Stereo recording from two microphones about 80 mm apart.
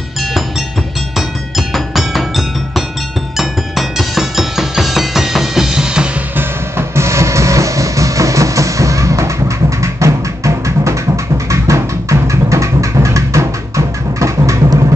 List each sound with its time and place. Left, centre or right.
1.7 s music: centre
6.3 s music: right